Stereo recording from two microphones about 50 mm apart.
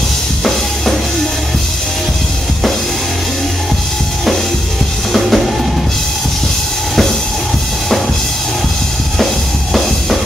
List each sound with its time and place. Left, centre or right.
5.1 s drum kit: centre